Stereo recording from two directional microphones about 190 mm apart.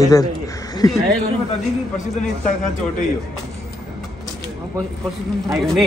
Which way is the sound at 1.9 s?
40° left (ahead or behind).